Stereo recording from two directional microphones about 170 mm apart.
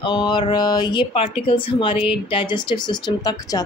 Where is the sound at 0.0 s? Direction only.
25° left (ahead or behind).